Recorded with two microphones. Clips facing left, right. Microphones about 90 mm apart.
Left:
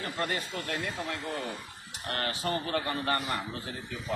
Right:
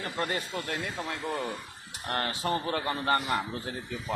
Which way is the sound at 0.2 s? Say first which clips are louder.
Right 2 dB; 20° right (ahead or behind).